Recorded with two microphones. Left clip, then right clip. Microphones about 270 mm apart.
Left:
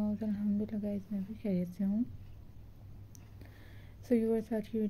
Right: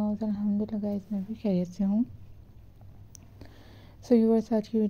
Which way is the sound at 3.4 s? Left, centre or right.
Right.